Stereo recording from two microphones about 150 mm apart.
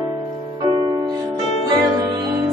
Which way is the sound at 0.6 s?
25° right (ahead or behind).